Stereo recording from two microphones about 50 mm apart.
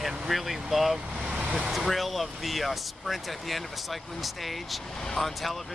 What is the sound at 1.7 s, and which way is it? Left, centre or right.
Speech, centre.